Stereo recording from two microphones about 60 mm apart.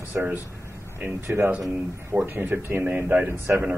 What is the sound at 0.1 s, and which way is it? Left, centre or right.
A man's voice, right.